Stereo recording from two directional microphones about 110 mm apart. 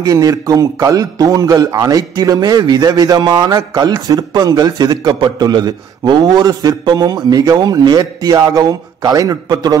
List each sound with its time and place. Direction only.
0.0 s a man's voice: 30° right (ahead or behind)